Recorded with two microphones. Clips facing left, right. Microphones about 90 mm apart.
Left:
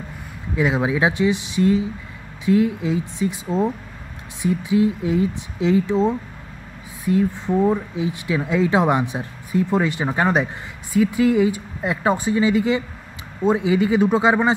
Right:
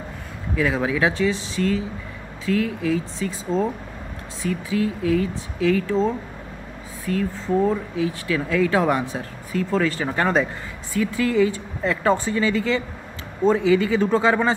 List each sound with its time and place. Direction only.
0.6 s speech: 20° left (ahead or behind)